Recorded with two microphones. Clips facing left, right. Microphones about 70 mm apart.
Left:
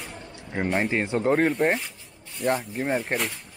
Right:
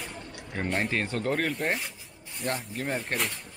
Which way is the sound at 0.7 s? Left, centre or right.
Centre.